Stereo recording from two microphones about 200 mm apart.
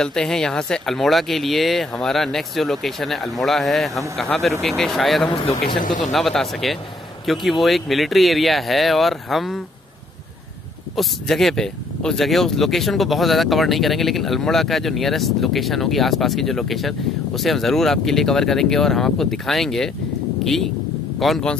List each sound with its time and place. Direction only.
0.0 s speech: 5° left (ahead or behind)
5.8 s speech: 40° left (ahead or behind)
6.1 s speech: centre (ahead or behind)
11.0 s speech: centre (ahead or behind)